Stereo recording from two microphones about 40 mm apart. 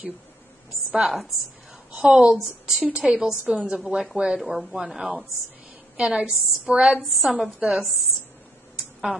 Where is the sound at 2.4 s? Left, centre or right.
Centre.